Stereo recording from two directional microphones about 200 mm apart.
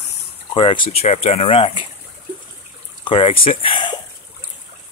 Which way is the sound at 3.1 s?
25° left (ahead or behind).